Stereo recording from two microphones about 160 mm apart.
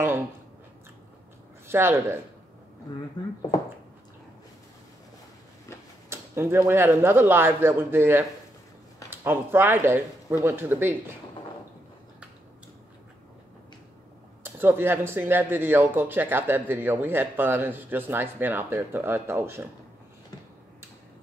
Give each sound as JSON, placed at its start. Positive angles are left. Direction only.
{"t": 1.7, "sound": "speech", "side_deg": -15}
{"t": 3.2, "sound": "speech", "side_deg": 30}
{"t": 6.0, "sound": "speech", "side_deg": -15}
{"t": 14.4, "sound": "speech", "side_deg": -15}